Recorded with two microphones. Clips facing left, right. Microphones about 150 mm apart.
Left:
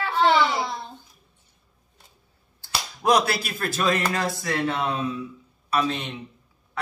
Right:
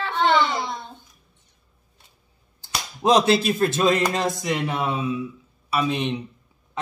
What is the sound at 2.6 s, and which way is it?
A man's voice, 20° right (ahead or behind).